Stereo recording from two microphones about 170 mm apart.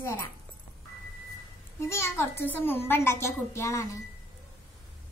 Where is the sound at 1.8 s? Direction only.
15° left (ahead or behind).